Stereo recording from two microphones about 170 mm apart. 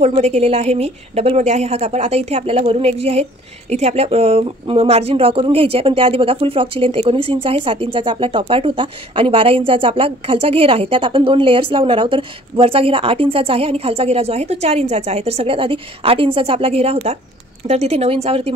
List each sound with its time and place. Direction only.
0.0 s speech: 40° right (ahead or behind)